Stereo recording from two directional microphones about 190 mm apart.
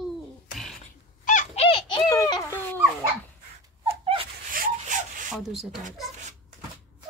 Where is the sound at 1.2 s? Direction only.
40° left (ahead or behind).